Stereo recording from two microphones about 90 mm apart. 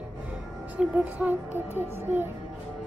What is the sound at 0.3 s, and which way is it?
Speech, 15° right (ahead or behind).